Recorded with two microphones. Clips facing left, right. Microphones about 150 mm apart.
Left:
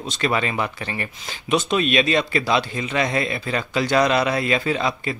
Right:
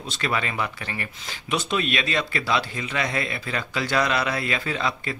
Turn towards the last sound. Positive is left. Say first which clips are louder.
# left 4 dB
turn(degrees=20)  # may be behind; listen again after turning